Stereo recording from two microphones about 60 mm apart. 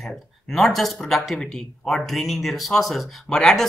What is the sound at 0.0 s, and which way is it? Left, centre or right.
Speech, centre.